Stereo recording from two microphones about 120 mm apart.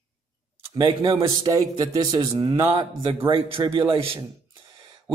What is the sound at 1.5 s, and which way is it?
Speech, 30° right (ahead or behind).